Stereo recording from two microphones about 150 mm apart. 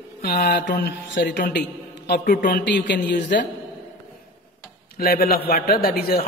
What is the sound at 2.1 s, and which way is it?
Speech, 65° left (ahead or behind).